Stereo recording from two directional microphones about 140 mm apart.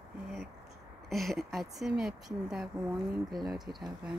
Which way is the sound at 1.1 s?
Centre (ahead or behind).